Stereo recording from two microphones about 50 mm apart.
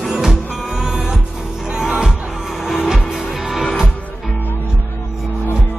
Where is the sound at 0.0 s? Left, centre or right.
Centre.